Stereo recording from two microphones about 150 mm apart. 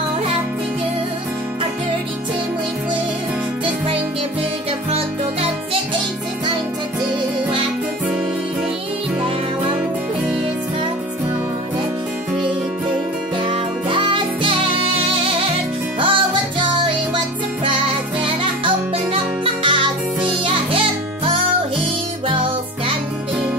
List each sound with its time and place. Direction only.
4.9 s music: 40° right (ahead or behind)
13.4 s music: 35° right (ahead or behind)
16.0 s music: 35° right (ahead or behind)
19.4 s music: 35° right (ahead or behind)